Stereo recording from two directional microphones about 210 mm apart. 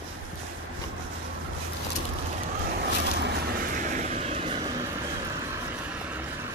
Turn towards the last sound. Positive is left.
turn(degrees=-30)  # may be behind; listen again after turning